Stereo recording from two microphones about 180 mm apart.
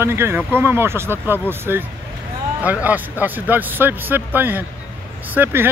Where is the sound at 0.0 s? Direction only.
15° right (ahead or behind).